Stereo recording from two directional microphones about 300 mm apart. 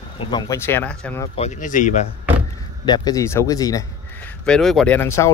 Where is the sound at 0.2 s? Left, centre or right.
Centre.